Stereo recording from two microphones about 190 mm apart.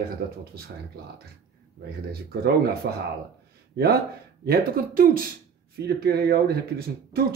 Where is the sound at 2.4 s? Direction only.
55° right (ahead or behind).